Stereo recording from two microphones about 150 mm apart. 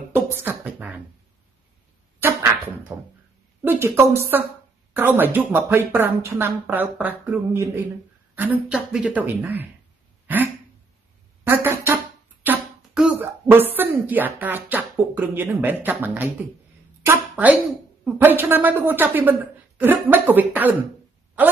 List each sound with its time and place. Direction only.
0.4 s beatboxing: 10° right (ahead or behind)
2.1 s a sound: 15° right (ahead or behind)
2.9 s speech: 15° right (ahead or behind)
10.2 s throat clearing: 10° right (ahead or behind)
11.4 s music: 15° right (ahead or behind)
12.4 s speech: 5° right (ahead or behind)